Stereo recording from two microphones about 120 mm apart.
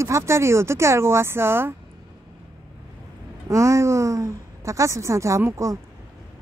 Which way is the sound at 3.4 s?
25° right (ahead or behind).